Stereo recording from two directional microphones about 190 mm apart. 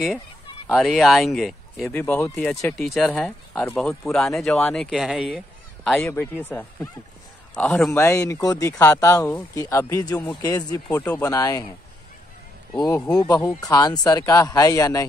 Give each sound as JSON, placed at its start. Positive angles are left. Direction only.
{"t": 0.7, "sound": "speech", "side_deg": 0}
{"t": 2.8, "sound": "speech", "side_deg": 0}
{"t": 6.0, "sound": "speech", "side_deg": 10}
{"t": 12.7, "sound": "speech", "side_deg": 20}